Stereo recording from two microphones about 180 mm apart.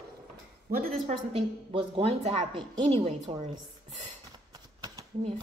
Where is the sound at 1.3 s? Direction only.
30° right (ahead or behind).